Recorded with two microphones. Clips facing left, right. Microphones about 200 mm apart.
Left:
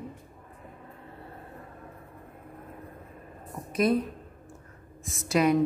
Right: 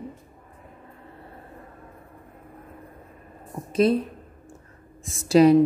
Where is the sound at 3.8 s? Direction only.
30° right (ahead or behind).